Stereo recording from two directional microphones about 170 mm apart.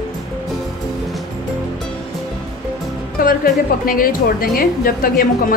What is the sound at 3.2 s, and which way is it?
Music, 60° left (ahead or behind).